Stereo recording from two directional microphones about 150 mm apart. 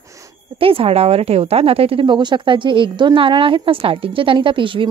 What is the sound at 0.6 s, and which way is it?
A woman's voice, 40° right (ahead or behind).